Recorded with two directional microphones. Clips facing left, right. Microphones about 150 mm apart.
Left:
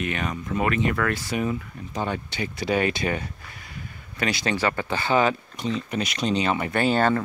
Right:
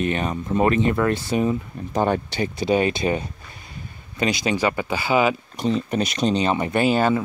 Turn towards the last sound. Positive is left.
turn(degrees=-10)  # may be behind; listen again after turning